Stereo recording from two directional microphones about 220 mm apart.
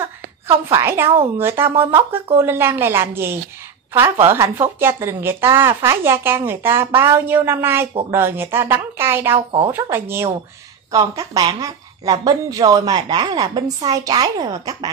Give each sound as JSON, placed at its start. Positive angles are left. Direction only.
{"t": 0.5, "sound": "speech", "side_deg": -10}